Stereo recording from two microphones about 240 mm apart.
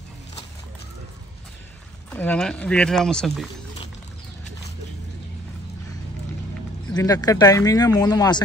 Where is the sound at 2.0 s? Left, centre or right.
Centre.